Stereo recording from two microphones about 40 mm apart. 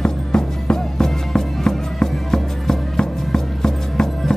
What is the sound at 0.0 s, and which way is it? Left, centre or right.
Music, centre.